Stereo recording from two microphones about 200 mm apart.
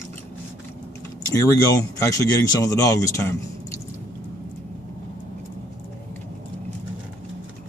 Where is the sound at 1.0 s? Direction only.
15° left (ahead or behind).